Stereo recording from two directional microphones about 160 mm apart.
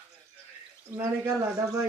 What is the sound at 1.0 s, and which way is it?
Speech, 15° right (ahead or behind).